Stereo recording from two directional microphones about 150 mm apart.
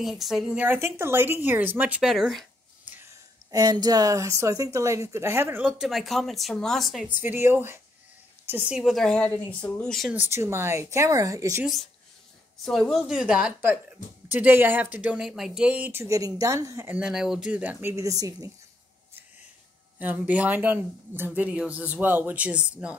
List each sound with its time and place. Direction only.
0.0 s speech: centre (ahead or behind)
3.5 s speech: 25° right (ahead or behind); by 7.1 s centre (ahead or behind)
7.1 s speech: 15° right (ahead or behind); by 10.1 s 5° left (ahead or behind)
10.1 s speech: 15° right (ahead or behind)
12.6 s speech: centre (ahead or behind); by 18.5 s 25° right (ahead or behind)
20.0 s speech: 10° right (ahead or behind)